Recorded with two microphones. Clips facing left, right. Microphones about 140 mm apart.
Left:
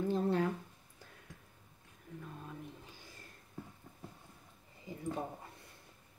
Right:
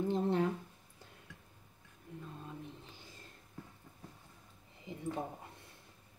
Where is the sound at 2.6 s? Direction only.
20° right (ahead or behind).